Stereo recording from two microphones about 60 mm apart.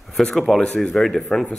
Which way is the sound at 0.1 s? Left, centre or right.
Centre.